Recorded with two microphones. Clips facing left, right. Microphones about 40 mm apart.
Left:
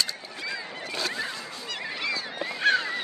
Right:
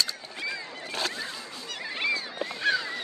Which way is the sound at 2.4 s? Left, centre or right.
Left.